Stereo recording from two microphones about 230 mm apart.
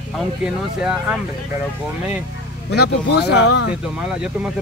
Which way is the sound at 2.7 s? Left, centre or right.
Left.